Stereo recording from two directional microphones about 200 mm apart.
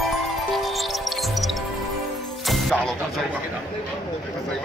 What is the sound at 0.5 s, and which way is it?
Music, centre (ahead or behind).